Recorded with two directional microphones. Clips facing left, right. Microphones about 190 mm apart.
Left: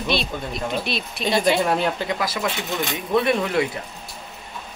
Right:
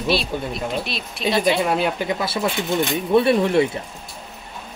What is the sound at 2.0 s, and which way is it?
Speech, 30° right (ahead or behind).